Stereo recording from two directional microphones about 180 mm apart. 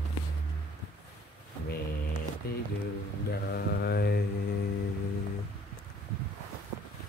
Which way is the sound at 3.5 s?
60° left (ahead or behind).